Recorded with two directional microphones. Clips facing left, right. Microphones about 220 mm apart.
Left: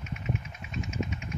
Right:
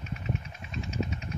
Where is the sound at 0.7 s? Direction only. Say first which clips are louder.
Even; 35° right (ahead or behind).